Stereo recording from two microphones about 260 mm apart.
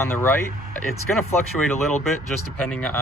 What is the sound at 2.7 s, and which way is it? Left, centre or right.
Speech, centre.